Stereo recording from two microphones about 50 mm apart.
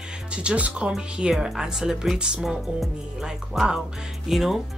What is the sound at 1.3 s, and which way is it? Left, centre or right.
A woman's voice, centre.